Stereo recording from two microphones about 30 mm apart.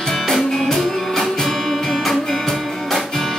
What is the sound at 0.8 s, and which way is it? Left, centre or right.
Music, centre.